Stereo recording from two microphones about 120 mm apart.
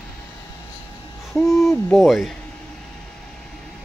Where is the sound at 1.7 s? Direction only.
Centre (ahead or behind).